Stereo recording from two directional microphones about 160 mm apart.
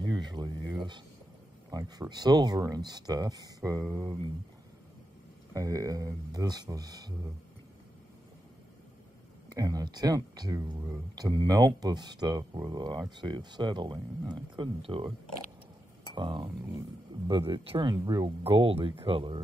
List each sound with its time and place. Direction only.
0.0 s a sound: 25° right (ahead or behind)
1.7 s speech: 25° right (ahead or behind)
5.5 s speech: 20° right (ahead or behind)
9.6 s speech: 20° right (ahead or behind)
16.2 s speech: 30° right (ahead or behind)